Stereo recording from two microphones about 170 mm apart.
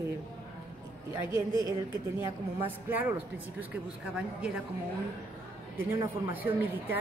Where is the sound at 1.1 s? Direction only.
20° right (ahead or behind).